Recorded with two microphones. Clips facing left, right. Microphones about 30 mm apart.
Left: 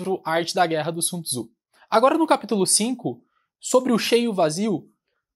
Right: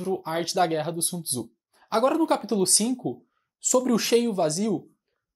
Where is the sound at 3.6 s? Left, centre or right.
Left.